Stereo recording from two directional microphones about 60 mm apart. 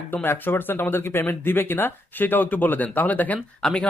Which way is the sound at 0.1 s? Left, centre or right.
Left.